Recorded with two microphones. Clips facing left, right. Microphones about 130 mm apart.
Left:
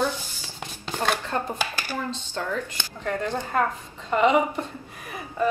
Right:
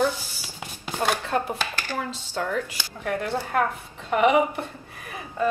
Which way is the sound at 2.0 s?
10° right (ahead or behind).